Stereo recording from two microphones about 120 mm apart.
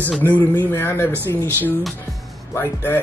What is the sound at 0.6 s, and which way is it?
Speech, 20° left (ahead or behind).